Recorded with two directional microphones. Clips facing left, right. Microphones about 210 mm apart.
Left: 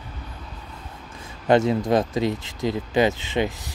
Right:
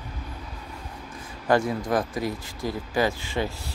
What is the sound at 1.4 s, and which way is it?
Speech, 20° left (ahead or behind).